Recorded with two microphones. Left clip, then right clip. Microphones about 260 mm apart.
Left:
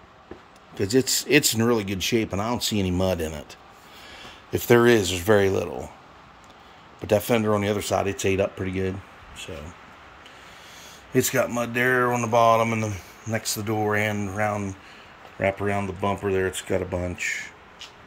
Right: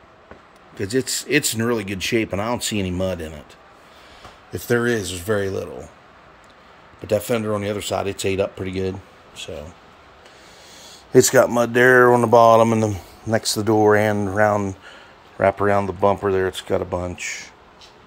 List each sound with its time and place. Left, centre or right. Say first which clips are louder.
0.7 s speech: left 1 dB; centre
4.5 s speech: left 3 dB; centre
7.1 s speech: even; centre
11.1 s speech: right 9 dB; centre
12.1 s mantra: right 10 dB; right
12.4 s speech: right 4 dB; right
12.8 s speech: right 8 dB; right
13.4 s mantra: right 7 dB; right
13.8 s speech: right 6 dB; right
15.3 s speech: right 7 dB; centre